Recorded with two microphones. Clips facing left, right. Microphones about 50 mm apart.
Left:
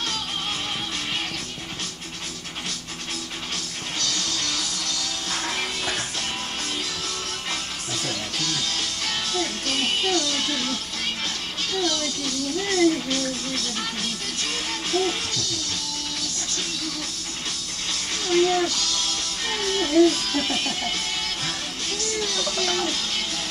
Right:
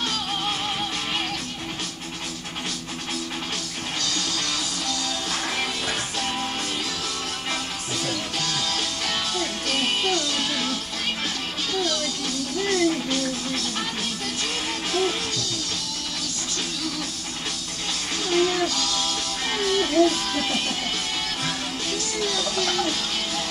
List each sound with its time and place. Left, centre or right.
4.1 s music: centre
8.0 s music: centre
12.6 s music: centre
14.9 s music: centre
18.3 s music: centre
21.9 s music: centre